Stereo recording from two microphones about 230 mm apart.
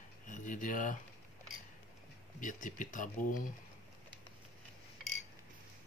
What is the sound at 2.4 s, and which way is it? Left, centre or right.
Speech, left.